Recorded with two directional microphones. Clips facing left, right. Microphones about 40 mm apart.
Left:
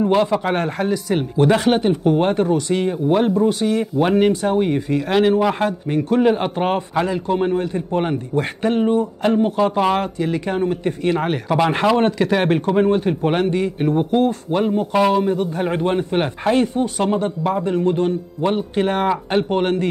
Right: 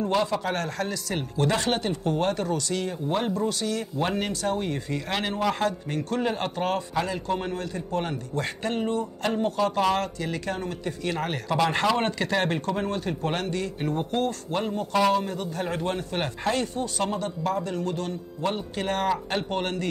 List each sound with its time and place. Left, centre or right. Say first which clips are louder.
0.0 s speech: left 8 dB; left